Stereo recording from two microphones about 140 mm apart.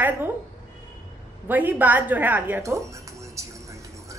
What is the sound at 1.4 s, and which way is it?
Music, 15° right (ahead or behind).